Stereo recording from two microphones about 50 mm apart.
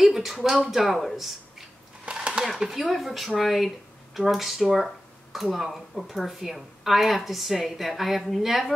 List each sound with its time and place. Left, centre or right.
0.0 s speech: centre
2.1 s a sound: right
2.4 s speech: centre